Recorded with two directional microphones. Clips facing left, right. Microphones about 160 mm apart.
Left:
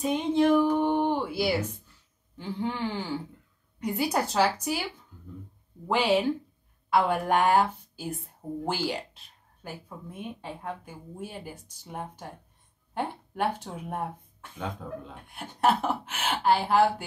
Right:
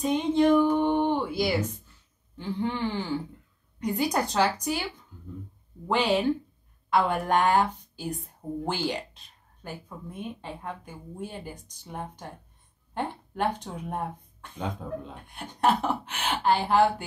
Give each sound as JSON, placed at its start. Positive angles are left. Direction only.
{"t": 0.0, "sound": "a sound", "side_deg": 5}
{"t": 2.3, "sound": "speech", "side_deg": 5}
{"t": 5.9, "sound": "a woman's voice", "side_deg": 5}